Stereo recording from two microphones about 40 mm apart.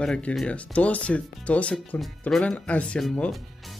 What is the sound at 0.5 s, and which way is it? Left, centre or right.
Speech, left.